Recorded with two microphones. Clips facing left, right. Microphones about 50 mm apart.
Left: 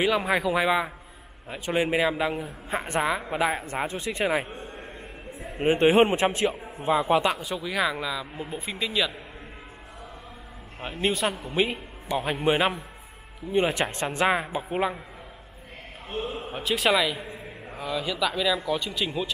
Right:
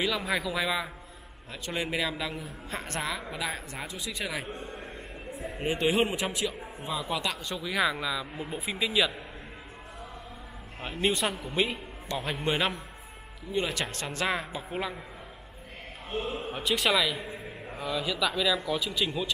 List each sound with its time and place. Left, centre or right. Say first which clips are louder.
0.0 s a man's voice: left 6 dB; left
4.5 s a sound: even; centre
5.6 s a woman's voice: left 8 dB; left
7.3 s a man's voice: left 2 dB; centre
10.8 s a man's voice: left 2 dB; centre
13.5 s a man's voice: left 6 dB; left
16.2 s a man's voice: left 1 dB; centre